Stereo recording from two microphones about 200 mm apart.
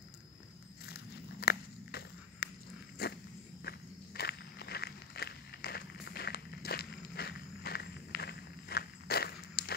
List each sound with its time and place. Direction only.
0.8 s walk: 50° left (ahead or behind)